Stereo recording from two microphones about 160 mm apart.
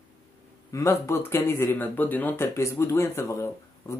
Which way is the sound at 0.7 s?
20° left (ahead or behind).